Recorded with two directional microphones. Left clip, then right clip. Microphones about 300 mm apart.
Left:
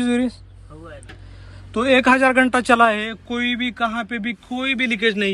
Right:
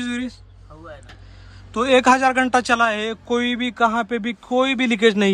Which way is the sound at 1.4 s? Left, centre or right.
Centre.